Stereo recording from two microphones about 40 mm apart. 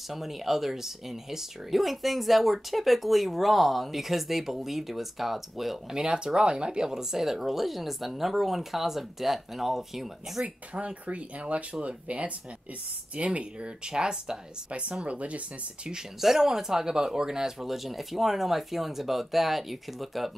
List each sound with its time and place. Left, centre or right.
0.1 s speech: centre
5.9 s speech: right
10.4 s speech: right
14.7 s speech: right
16.2 s speech: centre